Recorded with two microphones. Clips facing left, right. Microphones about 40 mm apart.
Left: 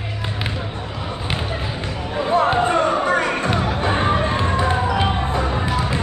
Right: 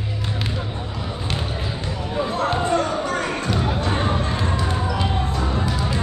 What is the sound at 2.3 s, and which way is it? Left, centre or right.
Music, left.